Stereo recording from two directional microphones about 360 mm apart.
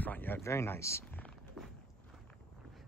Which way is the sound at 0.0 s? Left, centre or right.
Centre.